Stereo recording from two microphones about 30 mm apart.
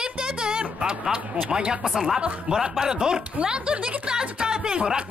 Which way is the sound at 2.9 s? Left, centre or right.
Right.